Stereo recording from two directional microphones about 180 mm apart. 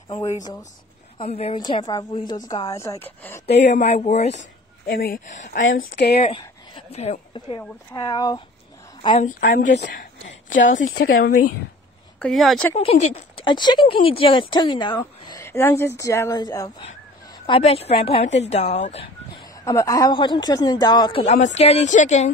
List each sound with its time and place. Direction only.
0.4 s speech: 20° left (ahead or behind)
1.1 s a woman's voice: 35° left (ahead or behind); by 3.4 s 15° left (ahead or behind)
3.6 s a woman's voice: 40° left (ahead or behind)
4.4 s speech: 70° left (ahead or behind); by 5.4 s 55° left (ahead or behind)
5.4 s a woman's voice: 90° left
5.9 s speech: 60° left (ahead or behind)
6.2 s speech: 30° left (ahead or behind)
9.2 s a woman's voice: 50° left (ahead or behind)
10.8 s speech: 90° left; by 11.5 s 55° left (ahead or behind)
12.2 s speech: centre (ahead or behind)
12.7 s speech: 35° left (ahead or behind); by 16.7 s 20° left (ahead or behind)
17.5 s a woman's voice: 35° left (ahead or behind)
19.6 s speech: 15° left (ahead or behind); by 22.3 s 40° left (ahead or behind)